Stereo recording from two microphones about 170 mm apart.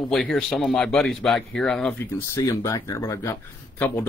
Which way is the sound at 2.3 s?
20° left (ahead or behind).